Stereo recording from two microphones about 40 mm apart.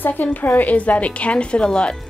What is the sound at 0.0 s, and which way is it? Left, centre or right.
A woman's voice, left.